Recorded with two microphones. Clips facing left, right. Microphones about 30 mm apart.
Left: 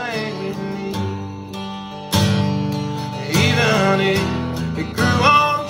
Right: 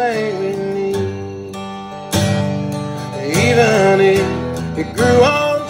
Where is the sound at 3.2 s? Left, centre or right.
Left.